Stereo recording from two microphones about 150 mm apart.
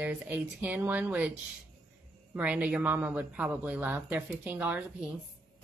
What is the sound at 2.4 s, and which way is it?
A woman's voice, 10° right (ahead or behind).